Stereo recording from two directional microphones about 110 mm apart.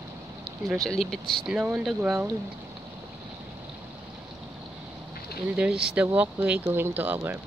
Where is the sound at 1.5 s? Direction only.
10° right (ahead or behind).